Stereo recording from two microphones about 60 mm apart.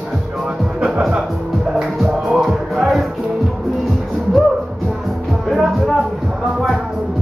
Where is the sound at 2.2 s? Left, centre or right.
Centre.